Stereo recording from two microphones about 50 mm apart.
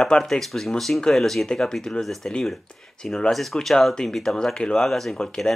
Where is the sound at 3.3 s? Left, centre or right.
Centre.